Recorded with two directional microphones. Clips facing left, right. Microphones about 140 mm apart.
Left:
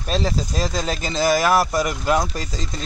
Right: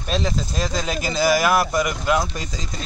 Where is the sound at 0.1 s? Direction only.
Centre (ahead or behind).